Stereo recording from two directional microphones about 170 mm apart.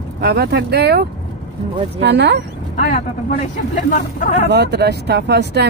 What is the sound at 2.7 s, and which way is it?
Speech, 50° left (ahead or behind).